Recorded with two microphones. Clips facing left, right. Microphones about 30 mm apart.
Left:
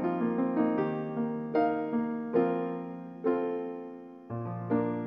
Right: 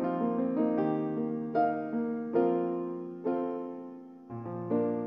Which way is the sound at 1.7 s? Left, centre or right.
Left.